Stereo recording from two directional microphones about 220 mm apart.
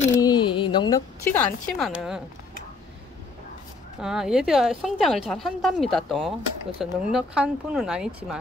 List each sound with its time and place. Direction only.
0.2 s a woman's voice: 20° left (ahead or behind)
1.9 s speech: 5° right (ahead or behind)
4.0 s speech: centre (ahead or behind)